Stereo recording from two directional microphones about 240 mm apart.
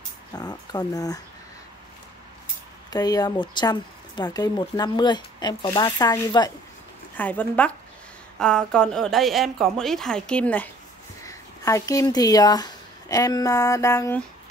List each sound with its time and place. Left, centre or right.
0.3 s speech: centre
2.9 s a woman's voice: centre